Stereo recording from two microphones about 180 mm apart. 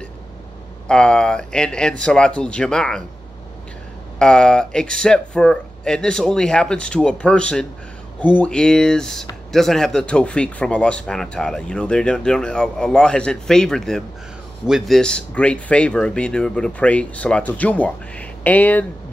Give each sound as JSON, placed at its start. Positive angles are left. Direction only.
{"t": 0.8, "sound": "speech", "side_deg": 5}
{"t": 4.2, "sound": "speech", "side_deg": 5}